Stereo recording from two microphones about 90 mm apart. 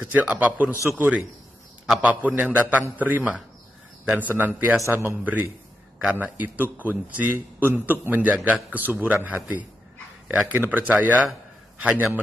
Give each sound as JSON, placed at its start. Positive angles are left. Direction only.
{"t": 0.0, "sound": "a man's voice", "side_deg": -15}
{"t": 10.7, "sound": "a man's voice", "side_deg": -20}